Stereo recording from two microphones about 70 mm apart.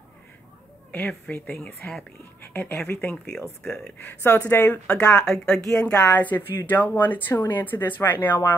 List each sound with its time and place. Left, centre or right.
1.3 s a woman's voice: left
3.6 s speech: centre
4.0 s speech: left
4.8 s speech: centre
5.9 s speech: left